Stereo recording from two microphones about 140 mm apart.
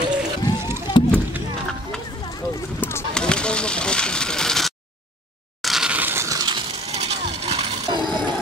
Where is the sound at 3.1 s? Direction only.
5° left (ahead or behind).